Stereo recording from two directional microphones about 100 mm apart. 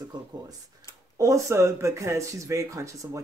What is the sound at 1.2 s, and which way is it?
Speech, 30° right (ahead or behind).